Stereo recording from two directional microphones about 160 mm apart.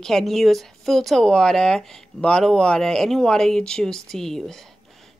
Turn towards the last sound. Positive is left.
turn(degrees=0)  # may be behind; listen again after turning